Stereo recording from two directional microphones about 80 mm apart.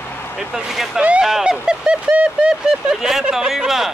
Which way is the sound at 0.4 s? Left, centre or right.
Centre.